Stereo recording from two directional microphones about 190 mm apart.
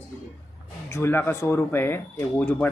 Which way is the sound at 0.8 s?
15° left (ahead or behind).